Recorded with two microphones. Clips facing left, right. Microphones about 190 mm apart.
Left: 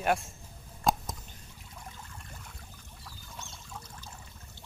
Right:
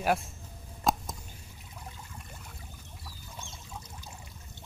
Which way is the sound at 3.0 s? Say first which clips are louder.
Even; 10° right (ahead or behind).